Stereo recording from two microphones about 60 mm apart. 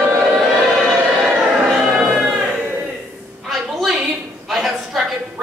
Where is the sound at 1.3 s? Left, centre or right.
Centre.